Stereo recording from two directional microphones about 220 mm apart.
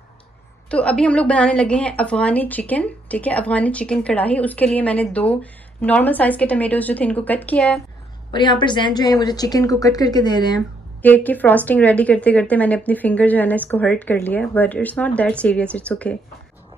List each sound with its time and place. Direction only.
0.7 s a woman's voice: 5° left (ahead or behind)
8.3 s a woman's voice: 20° left (ahead or behind)
11.0 s a woman's voice: 5° left (ahead or behind)